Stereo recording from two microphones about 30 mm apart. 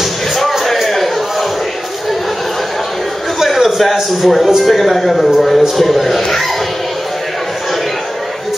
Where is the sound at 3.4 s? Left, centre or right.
Centre.